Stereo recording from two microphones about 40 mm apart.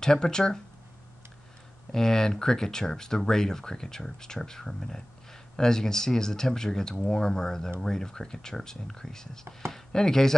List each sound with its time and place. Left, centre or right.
0.0 s speech: centre
1.9 s speech: centre